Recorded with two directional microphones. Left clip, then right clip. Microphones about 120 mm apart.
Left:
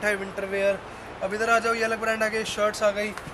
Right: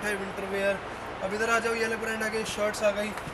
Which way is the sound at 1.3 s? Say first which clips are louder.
Left 4 dB; 15° left (ahead or behind).